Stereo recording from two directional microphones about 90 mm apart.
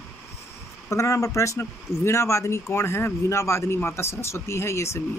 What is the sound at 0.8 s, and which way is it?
Speech, 35° left (ahead or behind).